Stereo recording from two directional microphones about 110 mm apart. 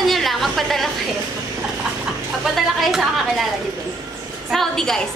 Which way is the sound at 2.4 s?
Centre (ahead or behind).